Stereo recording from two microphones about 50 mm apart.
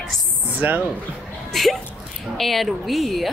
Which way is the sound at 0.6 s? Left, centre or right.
Right.